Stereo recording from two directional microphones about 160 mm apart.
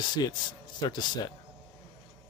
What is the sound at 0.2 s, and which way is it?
Speech, 30° left (ahead or behind).